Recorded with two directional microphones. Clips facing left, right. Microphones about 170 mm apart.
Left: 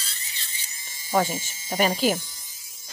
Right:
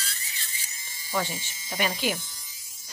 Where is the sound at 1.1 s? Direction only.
45° left (ahead or behind).